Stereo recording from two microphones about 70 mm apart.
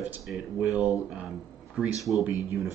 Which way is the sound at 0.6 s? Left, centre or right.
Centre.